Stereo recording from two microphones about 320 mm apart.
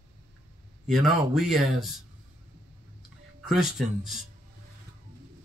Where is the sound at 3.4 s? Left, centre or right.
Centre.